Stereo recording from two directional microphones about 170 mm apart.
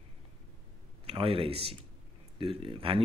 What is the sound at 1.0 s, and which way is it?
A man's voice, 35° right (ahead or behind).